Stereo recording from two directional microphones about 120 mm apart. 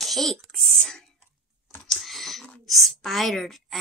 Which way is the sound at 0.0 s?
Centre (ahead or behind).